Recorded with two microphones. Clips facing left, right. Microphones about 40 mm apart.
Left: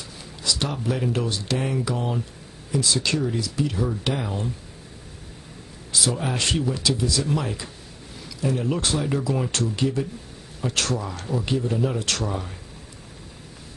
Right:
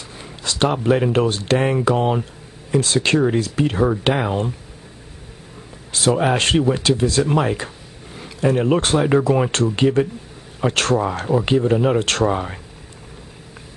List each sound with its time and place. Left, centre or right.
0.2 s a sound: right
0.8 s speech: right
5.9 s speech: right